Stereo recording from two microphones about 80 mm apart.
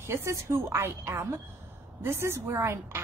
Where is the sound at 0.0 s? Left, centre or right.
Right.